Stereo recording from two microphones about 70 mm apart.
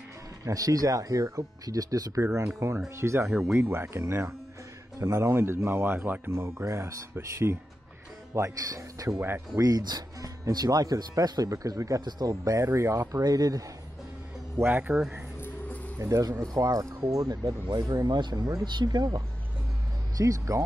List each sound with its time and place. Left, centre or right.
0.5 s speech: right
2.6 s speech: right
3.3 s speech: centre
3.5 s speech: right
6.3 s speech: right
8.4 s speech: right
12.0 s speech: right
13.1 s speech: right
14.6 s speech: right
16.0 s speech: right
17.6 s speech: right
17.9 s speech: right
20.2 s speech: right